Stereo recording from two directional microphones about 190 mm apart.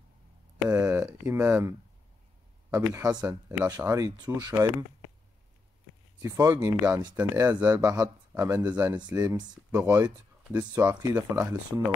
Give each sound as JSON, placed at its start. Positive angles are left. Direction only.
{"t": 0.7, "sound": "speech", "side_deg": -15}
{"t": 6.2, "sound": "speech", "side_deg": -15}
{"t": 8.9, "sound": "speech", "side_deg": -20}